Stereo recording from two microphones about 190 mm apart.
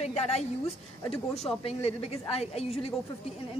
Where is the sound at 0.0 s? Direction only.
35° left (ahead or behind).